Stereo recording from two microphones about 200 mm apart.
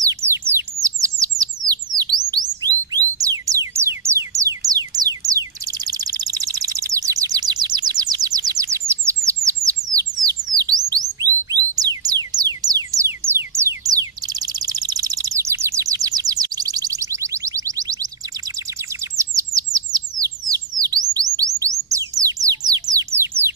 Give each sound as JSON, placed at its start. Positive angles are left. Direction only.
{"t": 0.0, "sound": "bird", "side_deg": -15}
{"t": 1.7, "sound": "a sound", "side_deg": -20}
{"t": 5.9, "sound": "bird", "side_deg": -20}
{"t": 10.9, "sound": "chirp tone", "side_deg": -20}
{"t": 11.5, "sound": "music", "side_deg": -20}
{"t": 19.1, "sound": "bird", "side_deg": -15}
{"t": 21.4, "sound": "chirp tone", "side_deg": -15}
{"t": 21.8, "sound": "bird", "side_deg": -15}